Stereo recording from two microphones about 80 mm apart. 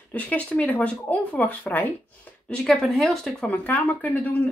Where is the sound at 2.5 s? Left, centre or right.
Centre.